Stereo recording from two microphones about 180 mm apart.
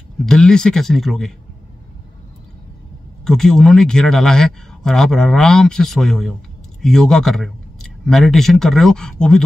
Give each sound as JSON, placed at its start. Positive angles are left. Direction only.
{"t": 0.2, "sound": "speech", "side_deg": 5}
{"t": 3.3, "sound": "speech", "side_deg": 5}